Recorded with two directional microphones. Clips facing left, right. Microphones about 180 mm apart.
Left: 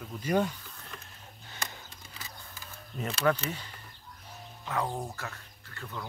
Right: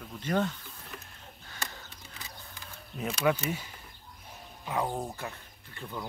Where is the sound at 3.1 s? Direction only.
10° right (ahead or behind).